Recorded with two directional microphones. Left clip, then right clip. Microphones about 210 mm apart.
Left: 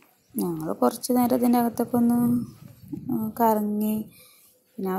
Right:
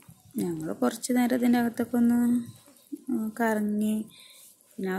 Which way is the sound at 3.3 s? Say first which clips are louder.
Left 6 dB; centre (ahead or behind).